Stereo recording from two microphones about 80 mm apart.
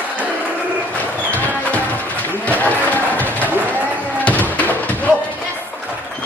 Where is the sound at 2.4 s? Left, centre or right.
Centre.